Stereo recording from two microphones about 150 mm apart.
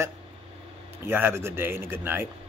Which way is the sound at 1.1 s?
15° right (ahead or behind).